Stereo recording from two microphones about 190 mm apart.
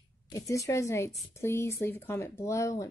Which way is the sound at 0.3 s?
15° left (ahead or behind).